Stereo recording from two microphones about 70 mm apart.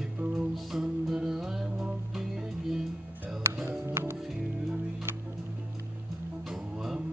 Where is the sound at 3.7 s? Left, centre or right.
Right.